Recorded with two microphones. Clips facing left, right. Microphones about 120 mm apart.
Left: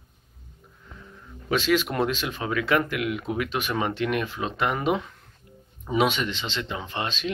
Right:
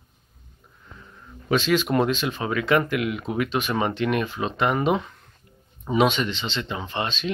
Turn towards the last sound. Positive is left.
turn(degrees=10)  # may be behind; listen again after turning